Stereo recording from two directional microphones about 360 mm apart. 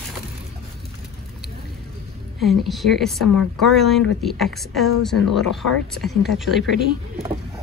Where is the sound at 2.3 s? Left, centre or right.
Centre.